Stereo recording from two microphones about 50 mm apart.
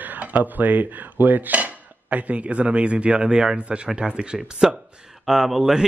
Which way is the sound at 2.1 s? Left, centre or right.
Right.